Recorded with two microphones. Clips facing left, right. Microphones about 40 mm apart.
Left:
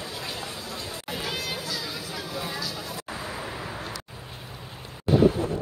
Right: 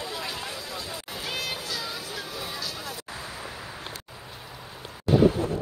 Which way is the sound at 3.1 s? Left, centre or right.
Left.